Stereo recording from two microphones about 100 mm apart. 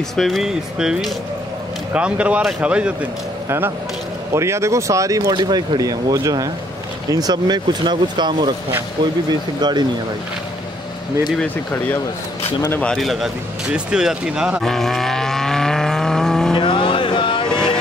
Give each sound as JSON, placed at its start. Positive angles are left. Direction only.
{"t": 0.1, "sound": "speech", "side_deg": 0}
{"t": 3.4, "sound": "speech", "side_deg": -25}
{"t": 5.3, "sound": "speech", "side_deg": -45}
{"t": 12.8, "sound": "speech", "side_deg": 0}
{"t": 13.7, "sound": "speech", "side_deg": -10}
{"t": 14.6, "sound": "vehicle", "side_deg": 5}
{"t": 16.5, "sound": "music", "side_deg": 55}
{"t": 17.5, "sound": "vehicle", "side_deg": 10}